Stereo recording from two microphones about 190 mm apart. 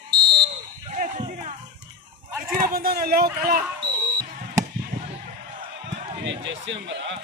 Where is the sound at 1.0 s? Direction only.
50° right (ahead or behind).